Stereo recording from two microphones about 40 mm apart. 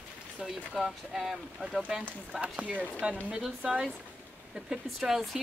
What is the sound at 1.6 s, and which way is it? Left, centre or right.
Speech, right.